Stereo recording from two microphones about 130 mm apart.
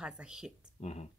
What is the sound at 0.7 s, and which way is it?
Speech, 60° left (ahead or behind).